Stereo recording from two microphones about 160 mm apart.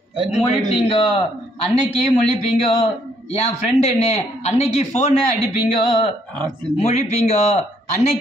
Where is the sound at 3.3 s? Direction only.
40° left (ahead or behind).